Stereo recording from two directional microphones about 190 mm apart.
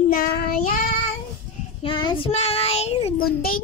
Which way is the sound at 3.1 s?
50° left (ahead or behind).